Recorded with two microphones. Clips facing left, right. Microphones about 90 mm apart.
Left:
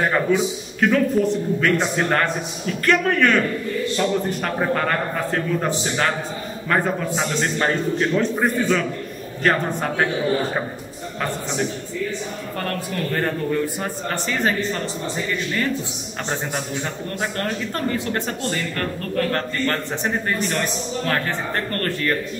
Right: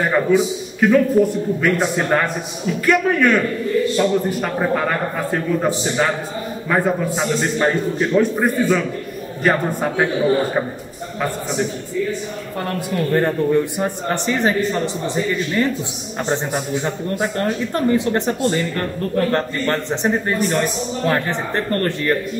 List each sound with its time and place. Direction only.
0.1 s a man's voice: 5° right (ahead or behind)
12.5 s a man's voice: 15° right (ahead or behind)
16.3 s speech: 15° right (ahead or behind)